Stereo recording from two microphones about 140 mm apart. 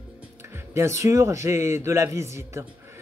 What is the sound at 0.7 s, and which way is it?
Speech, 20° right (ahead or behind).